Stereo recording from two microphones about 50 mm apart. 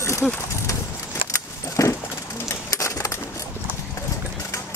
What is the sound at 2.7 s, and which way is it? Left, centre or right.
Typewriter, left.